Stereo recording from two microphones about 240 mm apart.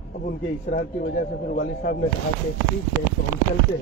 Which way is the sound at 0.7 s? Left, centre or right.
Left.